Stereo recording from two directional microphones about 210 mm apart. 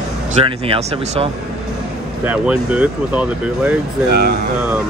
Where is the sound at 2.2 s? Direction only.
5° right (ahead or behind).